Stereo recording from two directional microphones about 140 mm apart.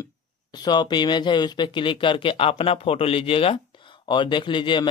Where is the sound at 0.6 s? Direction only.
30° left (ahead or behind).